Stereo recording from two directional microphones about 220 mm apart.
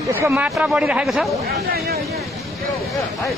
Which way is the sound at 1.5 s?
45° right (ahead or behind).